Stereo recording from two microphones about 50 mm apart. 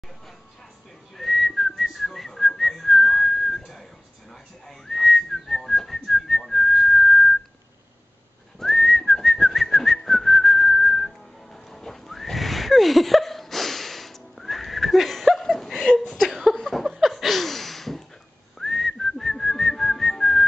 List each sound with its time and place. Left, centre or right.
1.1 s whistling: centre
8.5 s whistling: centre
15.4 s a sound: centre
16.7 s chuckle: centre
18.6 s whistling: centre